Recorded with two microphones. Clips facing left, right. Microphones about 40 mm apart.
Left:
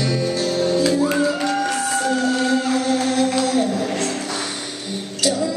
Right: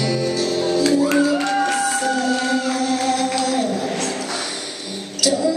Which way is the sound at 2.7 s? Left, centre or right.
Centre.